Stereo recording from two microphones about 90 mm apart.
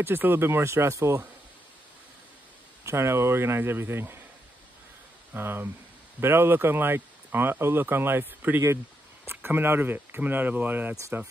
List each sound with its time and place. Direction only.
0.0 s speech: 25° right (ahead or behind)
2.8 s speech: 30° right (ahead or behind)
5.3 s speech: 25° right (ahead or behind)